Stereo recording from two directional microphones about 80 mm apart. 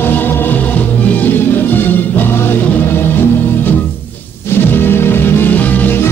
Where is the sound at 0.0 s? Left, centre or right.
Left.